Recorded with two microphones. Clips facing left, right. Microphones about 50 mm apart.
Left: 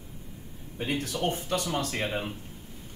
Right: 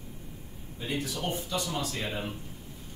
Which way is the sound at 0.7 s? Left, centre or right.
Left.